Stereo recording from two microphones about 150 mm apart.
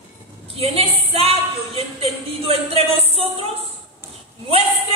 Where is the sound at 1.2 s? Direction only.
40° right (ahead or behind).